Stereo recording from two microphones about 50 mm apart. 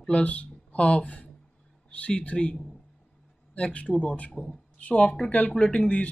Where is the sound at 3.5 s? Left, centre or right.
Left.